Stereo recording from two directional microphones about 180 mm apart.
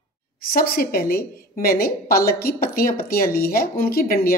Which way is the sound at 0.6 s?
55° left (ahead or behind).